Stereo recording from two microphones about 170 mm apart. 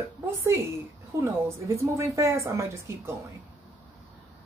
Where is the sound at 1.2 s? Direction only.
15° right (ahead or behind).